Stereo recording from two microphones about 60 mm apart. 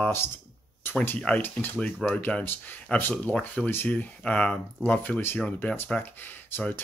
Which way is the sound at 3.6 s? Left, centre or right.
Left.